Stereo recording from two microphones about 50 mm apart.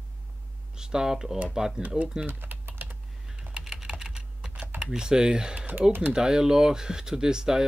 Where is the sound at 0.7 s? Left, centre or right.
Centre.